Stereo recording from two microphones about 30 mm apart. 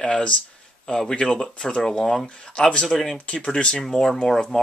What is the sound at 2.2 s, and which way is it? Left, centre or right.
Speech, left.